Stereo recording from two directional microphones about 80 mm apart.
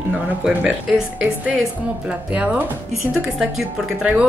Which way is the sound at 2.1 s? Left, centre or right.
Centre.